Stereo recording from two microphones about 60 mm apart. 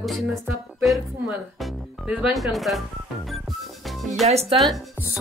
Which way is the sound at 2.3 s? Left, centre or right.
Centre.